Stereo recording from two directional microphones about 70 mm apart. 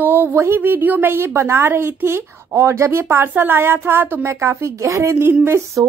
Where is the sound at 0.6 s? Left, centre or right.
Right.